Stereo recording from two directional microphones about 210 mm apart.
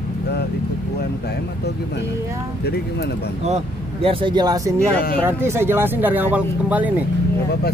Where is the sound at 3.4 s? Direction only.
30° right (ahead or behind); by 6.9 s 5° right (ahead or behind).